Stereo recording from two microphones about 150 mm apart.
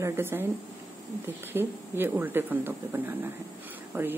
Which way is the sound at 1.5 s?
15° right (ahead or behind).